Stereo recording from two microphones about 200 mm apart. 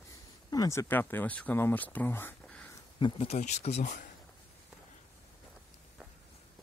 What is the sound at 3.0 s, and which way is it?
Speech, 25° left (ahead or behind).